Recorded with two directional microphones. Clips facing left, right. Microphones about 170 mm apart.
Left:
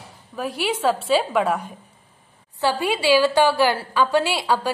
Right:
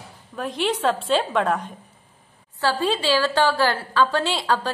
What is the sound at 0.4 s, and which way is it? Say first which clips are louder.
A woman's voice: even; 10° left (ahead or behind).